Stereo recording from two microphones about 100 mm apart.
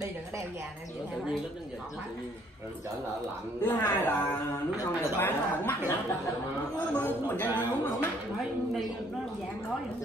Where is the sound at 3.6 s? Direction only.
20° left (ahead or behind).